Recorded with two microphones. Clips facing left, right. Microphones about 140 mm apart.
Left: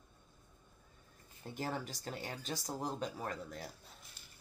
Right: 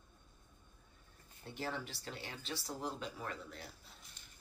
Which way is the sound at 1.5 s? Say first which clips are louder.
Left 2 dB; 45° left (ahead or behind).